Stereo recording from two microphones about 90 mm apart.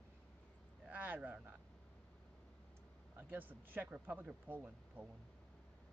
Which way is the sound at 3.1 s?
20° right (ahead or behind).